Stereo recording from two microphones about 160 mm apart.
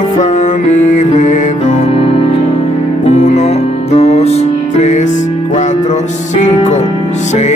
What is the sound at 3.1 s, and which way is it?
Music, 45° left (ahead or behind).